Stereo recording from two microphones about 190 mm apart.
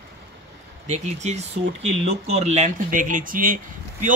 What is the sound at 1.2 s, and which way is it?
Speech, 35° right (ahead or behind).